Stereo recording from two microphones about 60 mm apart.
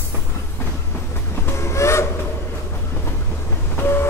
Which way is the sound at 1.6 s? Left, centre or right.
Left.